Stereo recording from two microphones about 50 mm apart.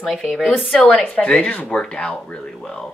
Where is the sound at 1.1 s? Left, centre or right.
Left.